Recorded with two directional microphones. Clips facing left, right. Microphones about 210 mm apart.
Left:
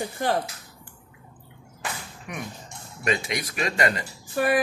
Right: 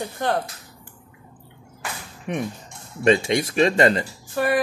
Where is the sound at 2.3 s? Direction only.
30° right (ahead or behind).